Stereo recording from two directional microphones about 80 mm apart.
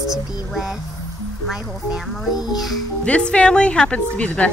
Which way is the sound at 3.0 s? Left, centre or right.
Centre.